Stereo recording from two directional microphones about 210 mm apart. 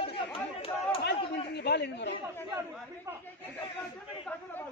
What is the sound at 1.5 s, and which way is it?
Speech, 50° left (ahead or behind).